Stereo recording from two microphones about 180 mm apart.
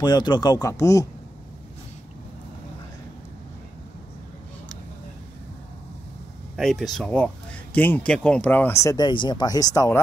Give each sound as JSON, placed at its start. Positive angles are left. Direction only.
{"t": 0.0, "sound": "speech", "side_deg": 25}
{"t": 6.5, "sound": "speech", "side_deg": 0}
{"t": 8.9, "sound": "speech", "side_deg": 25}